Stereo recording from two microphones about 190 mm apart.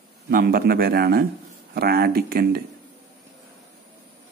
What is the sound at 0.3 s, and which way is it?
Speech, 50° right (ahead or behind).